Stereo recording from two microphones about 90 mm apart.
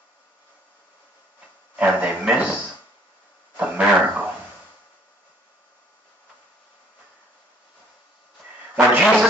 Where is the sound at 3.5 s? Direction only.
20° right (ahead or behind).